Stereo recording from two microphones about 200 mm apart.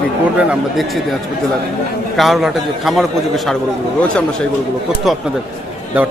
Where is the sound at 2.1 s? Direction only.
Centre (ahead or behind).